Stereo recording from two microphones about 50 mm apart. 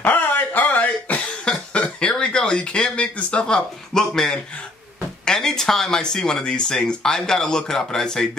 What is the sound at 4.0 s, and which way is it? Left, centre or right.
Speech, centre.